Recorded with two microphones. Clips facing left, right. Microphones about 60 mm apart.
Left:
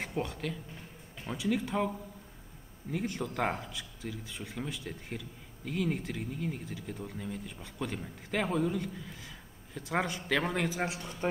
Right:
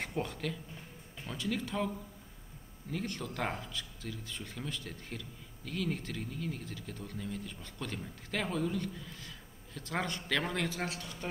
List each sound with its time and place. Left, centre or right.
0.0 s speech: centre
1.2 s speech: centre